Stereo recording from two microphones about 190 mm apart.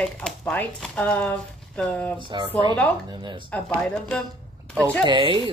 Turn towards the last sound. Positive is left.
turn(degrees=-25)  # may be behind; listen again after turning